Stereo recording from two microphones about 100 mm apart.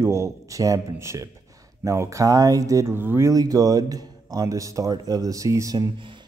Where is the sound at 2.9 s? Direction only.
20° right (ahead or behind).